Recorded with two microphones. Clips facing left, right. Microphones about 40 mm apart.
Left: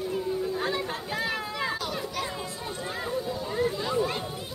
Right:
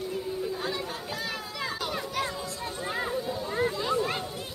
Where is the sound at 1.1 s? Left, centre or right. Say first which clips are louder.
Left 4 dB; left.